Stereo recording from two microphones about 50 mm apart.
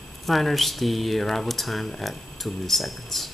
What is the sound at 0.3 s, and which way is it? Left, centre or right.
Speech, centre.